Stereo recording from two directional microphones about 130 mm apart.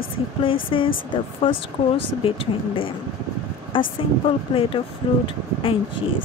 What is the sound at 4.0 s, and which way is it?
Speech, 45° left (ahead or behind).